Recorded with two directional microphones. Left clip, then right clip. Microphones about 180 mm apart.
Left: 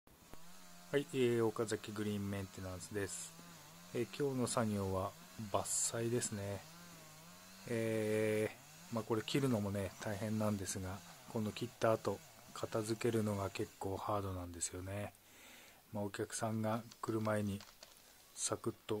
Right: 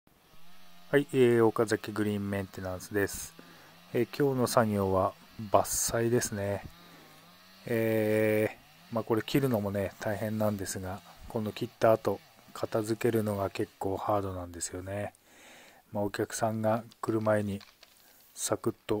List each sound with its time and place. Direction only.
0.9 s speech: 35° right (ahead or behind)
7.6 s speech: 30° right (ahead or behind)